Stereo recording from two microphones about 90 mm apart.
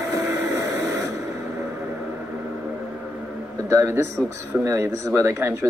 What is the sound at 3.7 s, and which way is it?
Speech, 30° right (ahead or behind).